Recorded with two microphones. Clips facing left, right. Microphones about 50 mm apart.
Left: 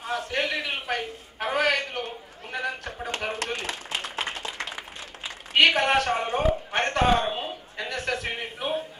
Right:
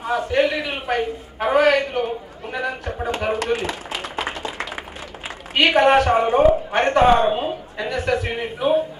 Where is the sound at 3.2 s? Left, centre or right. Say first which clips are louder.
Right 9 dB; centre.